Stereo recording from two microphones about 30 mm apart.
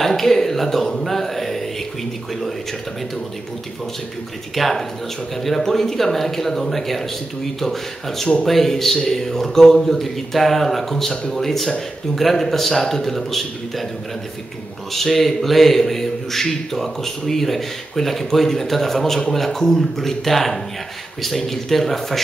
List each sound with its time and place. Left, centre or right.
0.0 s speech: centre
4.6 s a man's voice: centre
14.9 s a man's voice: centre